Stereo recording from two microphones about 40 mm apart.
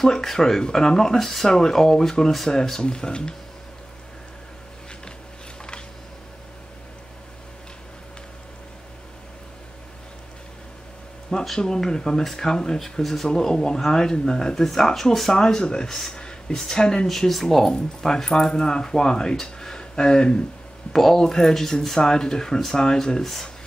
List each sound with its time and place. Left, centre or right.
0.0 s speech: centre
2.8 s speech: left
11.2 s speech: centre
17.1 s speech: centre